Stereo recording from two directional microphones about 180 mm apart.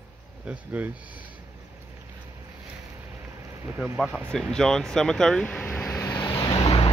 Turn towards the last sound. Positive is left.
turn(degrees=25)  # may be behind; listen again after turning